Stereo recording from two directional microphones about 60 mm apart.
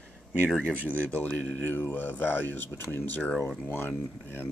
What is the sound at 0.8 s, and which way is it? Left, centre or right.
Speech, left.